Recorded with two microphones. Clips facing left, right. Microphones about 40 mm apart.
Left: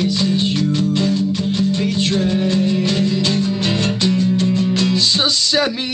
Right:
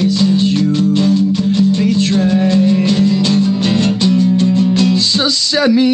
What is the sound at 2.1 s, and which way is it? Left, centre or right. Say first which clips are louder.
Music: right 4 dB; right.